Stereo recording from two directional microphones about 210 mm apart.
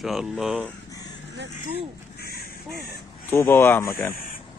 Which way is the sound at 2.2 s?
45° left (ahead or behind).